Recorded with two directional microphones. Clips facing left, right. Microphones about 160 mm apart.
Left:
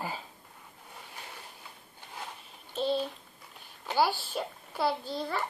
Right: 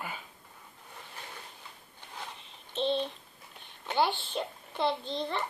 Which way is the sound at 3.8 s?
5° left (ahead or behind).